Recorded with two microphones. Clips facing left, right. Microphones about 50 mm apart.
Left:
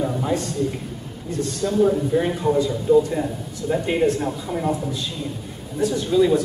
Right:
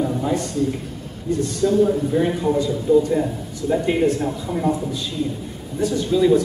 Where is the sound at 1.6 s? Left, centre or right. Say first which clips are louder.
Right 1 dB; centre.